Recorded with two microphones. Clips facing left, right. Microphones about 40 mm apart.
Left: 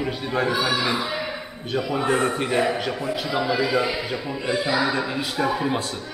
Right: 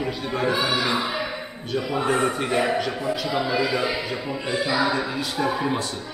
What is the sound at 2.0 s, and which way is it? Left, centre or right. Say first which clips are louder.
A man's voice: even; centre.